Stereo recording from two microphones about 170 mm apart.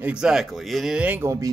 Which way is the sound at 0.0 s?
5° right (ahead or behind).